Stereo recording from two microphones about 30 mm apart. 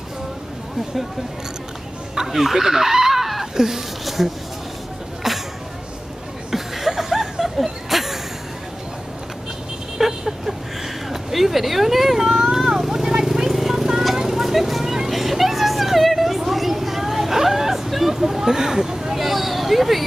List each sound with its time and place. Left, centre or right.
2.1 s speech: centre
2.6 s a sound: centre
4.2 s speech: centre
6.5 s chuckle: centre
7.9 s a sound: centre
9.9 s vehicle: centre